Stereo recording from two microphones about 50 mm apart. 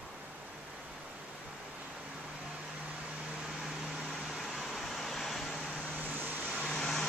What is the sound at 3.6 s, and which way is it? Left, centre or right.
Vehicle, centre.